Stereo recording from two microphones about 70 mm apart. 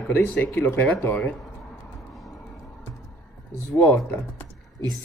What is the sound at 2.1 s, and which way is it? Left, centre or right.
Music, centre.